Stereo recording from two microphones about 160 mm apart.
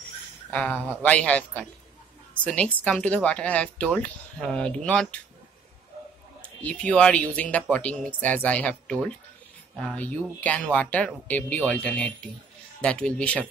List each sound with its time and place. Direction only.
0.5 s speech: 10° left (ahead or behind)
6.4 s speech: 10° left (ahead or behind)